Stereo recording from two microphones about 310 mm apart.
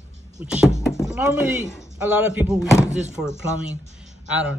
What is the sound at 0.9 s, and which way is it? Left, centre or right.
Speech, centre.